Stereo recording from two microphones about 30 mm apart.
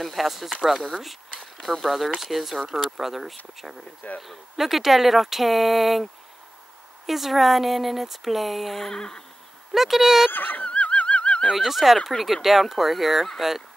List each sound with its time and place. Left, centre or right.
0.0 s speech: centre
0.7 s speech: centre
7.1 s speech: centre
8.9 s speech: left
9.7 s speech: centre
10.3 s fowl: left
10.6 s a sound: left
11.5 s speech: centre